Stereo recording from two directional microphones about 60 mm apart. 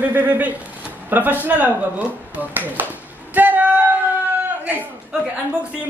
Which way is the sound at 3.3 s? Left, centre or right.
Right.